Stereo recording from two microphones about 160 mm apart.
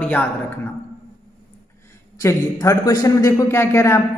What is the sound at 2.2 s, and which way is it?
A man's voice, 20° left (ahead or behind).